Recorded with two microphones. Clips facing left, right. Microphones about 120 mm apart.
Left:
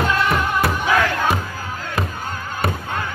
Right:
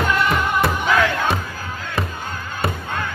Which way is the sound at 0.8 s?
10° left (ahead or behind).